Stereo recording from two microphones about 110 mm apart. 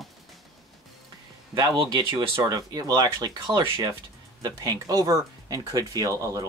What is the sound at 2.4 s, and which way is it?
Speech, 35° right (ahead or behind).